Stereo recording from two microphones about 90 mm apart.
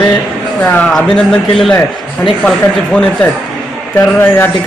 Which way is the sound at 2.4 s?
10° left (ahead or behind).